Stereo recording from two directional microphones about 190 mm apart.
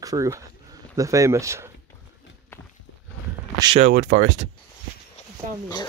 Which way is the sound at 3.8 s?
45° right (ahead or behind).